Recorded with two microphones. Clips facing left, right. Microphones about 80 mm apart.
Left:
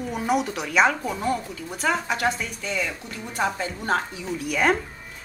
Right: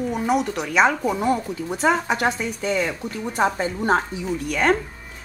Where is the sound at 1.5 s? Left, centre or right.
Right.